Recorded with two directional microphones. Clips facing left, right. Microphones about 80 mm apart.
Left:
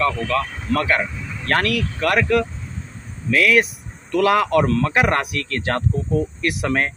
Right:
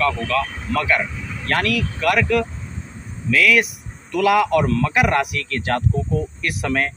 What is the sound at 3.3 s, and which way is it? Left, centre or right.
Speech, left.